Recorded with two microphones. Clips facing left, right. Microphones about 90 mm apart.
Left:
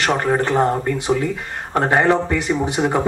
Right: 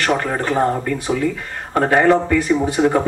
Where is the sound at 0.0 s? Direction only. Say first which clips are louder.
Left 1 dB; 20° left (ahead or behind).